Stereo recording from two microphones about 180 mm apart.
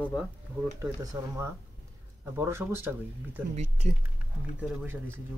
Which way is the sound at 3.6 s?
35° right (ahead or behind).